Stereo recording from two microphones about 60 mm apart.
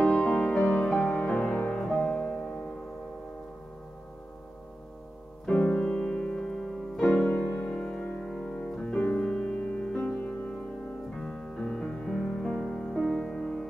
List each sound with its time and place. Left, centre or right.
0.0 s music: centre
1.1 s music: left
5.5 s music: centre
7.6 s music: centre
8.5 s music: centre
11.1 s music: centre